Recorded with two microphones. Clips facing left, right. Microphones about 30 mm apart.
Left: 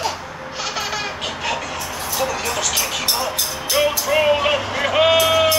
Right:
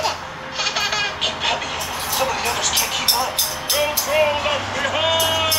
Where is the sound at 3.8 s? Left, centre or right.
Centre.